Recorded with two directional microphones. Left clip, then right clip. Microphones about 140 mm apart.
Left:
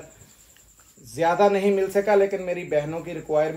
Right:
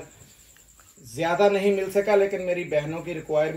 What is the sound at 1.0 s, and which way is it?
Speech, 25° left (ahead or behind).